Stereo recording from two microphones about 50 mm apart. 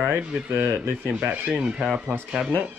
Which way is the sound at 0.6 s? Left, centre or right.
Right.